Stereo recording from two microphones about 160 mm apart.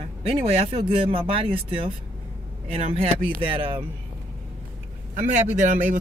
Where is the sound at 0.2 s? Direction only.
40° right (ahead or behind).